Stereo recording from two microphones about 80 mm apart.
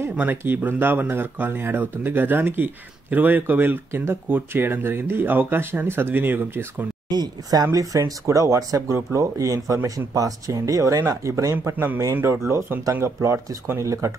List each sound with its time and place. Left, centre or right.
0.1 s speech: right
7.1 s speech: right
7.6 s speech: right